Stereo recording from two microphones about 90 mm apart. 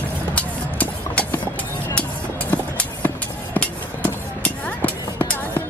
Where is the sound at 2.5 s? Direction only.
20° left (ahead or behind).